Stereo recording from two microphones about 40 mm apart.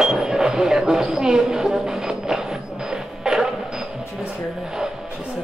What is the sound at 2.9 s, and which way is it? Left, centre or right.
Printer, centre.